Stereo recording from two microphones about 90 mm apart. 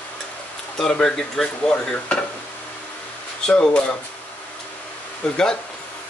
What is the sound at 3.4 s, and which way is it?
Speech, 10° left (ahead or behind).